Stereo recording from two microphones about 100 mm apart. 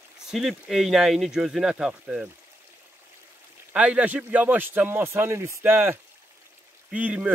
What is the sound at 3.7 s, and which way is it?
Speech, 15° right (ahead or behind).